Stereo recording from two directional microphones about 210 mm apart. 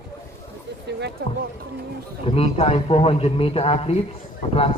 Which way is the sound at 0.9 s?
55° right (ahead or behind).